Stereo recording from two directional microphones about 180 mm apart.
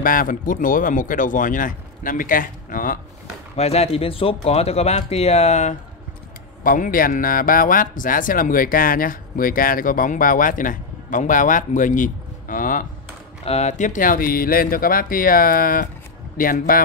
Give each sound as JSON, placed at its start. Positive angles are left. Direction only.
{"t": 0.0, "sound": "speech", "side_deg": 50}
{"t": 3.5, "sound": "speech", "side_deg": 35}
{"t": 6.6, "sound": "speech", "side_deg": 50}
{"t": 13.5, "sound": "speech", "side_deg": 40}